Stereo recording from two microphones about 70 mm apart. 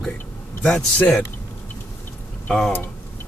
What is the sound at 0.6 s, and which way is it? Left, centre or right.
Speech, centre.